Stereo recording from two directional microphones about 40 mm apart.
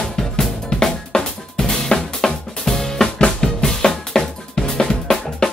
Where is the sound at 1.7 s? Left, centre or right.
Centre.